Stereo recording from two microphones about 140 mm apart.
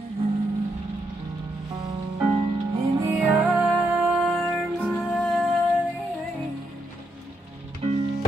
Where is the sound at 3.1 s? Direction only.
10° right (ahead or behind).